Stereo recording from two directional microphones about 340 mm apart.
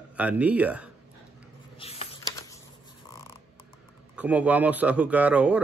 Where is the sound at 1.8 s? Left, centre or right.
Centre.